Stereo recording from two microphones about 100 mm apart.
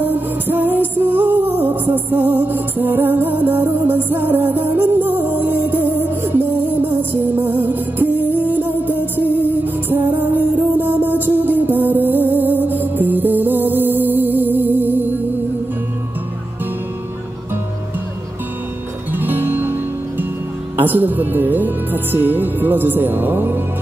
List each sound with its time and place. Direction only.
0.0 s music: 15° right (ahead or behind)
19.1 s music: 20° right (ahead or behind)
20.7 s speech: 20° right (ahead or behind)